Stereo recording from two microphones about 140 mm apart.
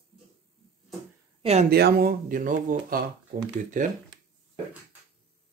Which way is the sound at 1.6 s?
90° right.